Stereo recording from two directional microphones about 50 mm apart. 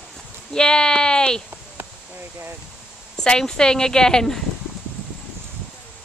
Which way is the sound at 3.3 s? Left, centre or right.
Centre.